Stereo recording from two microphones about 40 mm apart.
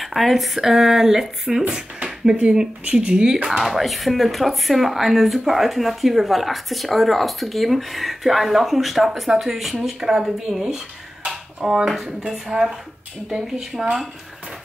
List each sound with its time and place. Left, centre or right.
0.0 s speech: centre
2.2 s speech: right
3.6 s speech: centre
9.9 s speech: centre
10.5 s speech: left
11.2 s a sound: centre
12.3 s speech: centre